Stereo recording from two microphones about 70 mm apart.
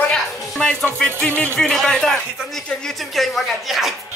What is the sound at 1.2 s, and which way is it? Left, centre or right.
Music, left.